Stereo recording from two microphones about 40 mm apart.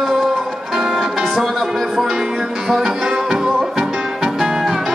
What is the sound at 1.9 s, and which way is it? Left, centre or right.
Music, centre.